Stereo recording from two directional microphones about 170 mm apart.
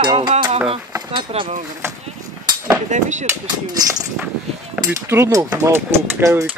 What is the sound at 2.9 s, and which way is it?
Speech, 45° right (ahead or behind).